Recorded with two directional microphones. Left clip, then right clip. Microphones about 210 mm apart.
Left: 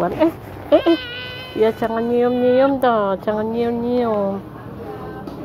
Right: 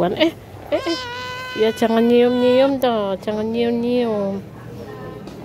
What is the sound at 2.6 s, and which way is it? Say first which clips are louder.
Speech: left 2 dB; 15° right (ahead or behind).